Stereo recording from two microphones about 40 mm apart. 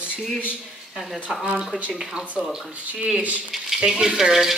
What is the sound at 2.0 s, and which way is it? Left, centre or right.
Speech, right.